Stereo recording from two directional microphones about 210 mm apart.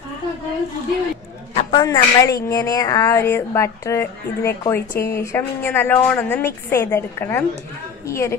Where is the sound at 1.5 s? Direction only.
30° left (ahead or behind).